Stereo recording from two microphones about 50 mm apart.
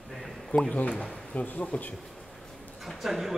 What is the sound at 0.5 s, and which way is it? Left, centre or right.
A man's voice, left.